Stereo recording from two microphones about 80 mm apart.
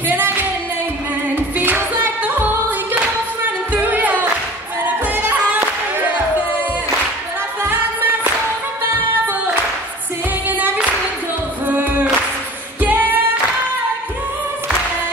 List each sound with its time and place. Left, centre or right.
0.1 s singing: right
1.3 s music: right
7.6 s music: right
10.5 s singing: right